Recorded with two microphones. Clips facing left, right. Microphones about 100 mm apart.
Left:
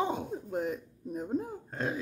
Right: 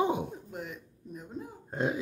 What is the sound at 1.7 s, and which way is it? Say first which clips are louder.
Throat clearing: right 4 dB; 20° right (ahead or behind).